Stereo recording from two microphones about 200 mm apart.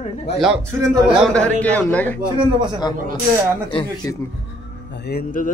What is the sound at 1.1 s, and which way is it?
Speech, centre (ahead or behind).